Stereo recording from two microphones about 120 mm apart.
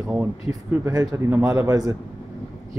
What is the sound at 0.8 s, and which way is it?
Speech, 25° right (ahead or behind).